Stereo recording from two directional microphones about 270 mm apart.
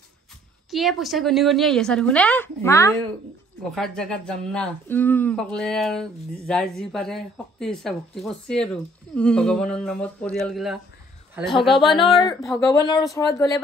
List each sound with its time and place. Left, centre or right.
0.7 s speech: centre
12.0 s speech: centre
12.4 s speech: centre